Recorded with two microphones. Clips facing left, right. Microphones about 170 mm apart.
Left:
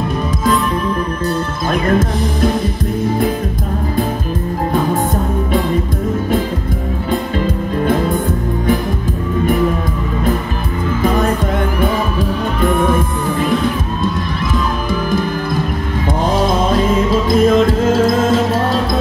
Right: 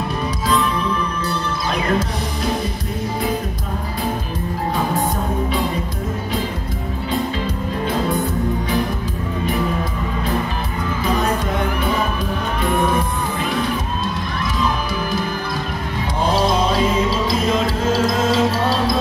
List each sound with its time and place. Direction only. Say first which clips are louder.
1.7 s music: left 6 dB; 50° left (ahead or behind)
17.1 s music: left 7 dB; 50° left (ahead or behind)